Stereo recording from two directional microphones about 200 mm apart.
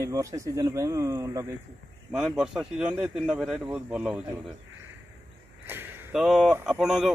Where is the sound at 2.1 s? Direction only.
5° right (ahead or behind).